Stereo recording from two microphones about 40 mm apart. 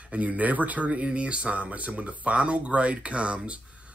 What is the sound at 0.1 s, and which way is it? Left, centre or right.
Speech, right.